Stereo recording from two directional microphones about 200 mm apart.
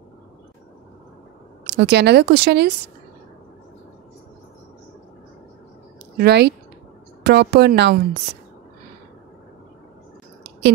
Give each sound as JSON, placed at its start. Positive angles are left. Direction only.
{"t": 1.7, "sound": "speech", "side_deg": -60}
{"t": 6.1, "sound": "speech", "side_deg": -55}